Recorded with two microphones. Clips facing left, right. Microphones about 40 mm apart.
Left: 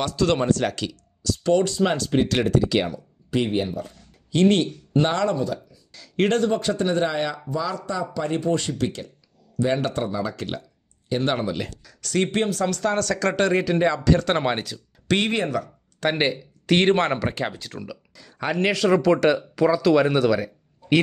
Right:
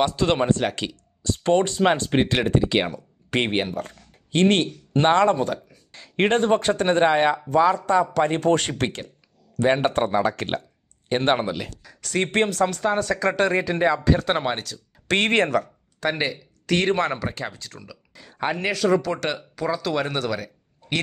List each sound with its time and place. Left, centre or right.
0.0 s speech: right
3.3 s speech: right
9.6 s speech: right
11.8 s speech: right
12.3 s speech: right
12.6 s speech: right
15.0 s speech: right
16.1 s speech: left
18.1 s speech: right
18.9 s speech: centre